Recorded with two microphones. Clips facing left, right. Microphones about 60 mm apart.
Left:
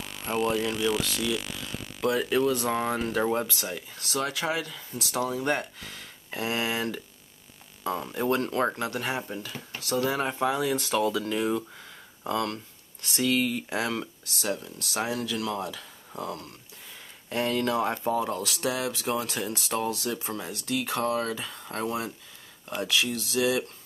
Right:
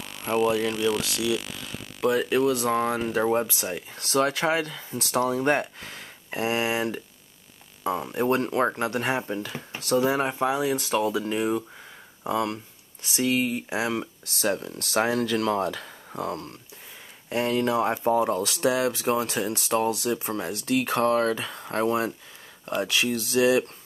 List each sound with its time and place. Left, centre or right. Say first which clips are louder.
0.0 s speech: right 4 dB; centre
3.7 s speech: right 10 dB; right
6.3 s speech: right 4 dB; centre
8.3 s speech: right 2 dB; right
9.9 s speech: right 4 dB; right
13.2 s speech: right 1 dB; right
13.7 s speech: right 2 dB; centre
14.4 s speech: right 5 dB; right
17.3 s speech: right 3 dB; centre
18.0 s speech: right 5 dB; right
20.4 s speech: right 6 dB; right